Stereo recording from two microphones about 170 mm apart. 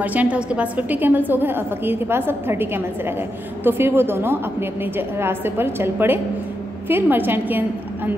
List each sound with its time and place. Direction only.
0.0 s a woman's voice: 10° right (ahead or behind)